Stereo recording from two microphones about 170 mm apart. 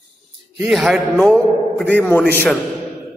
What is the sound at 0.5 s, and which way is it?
A man's voice, centre (ahead or behind).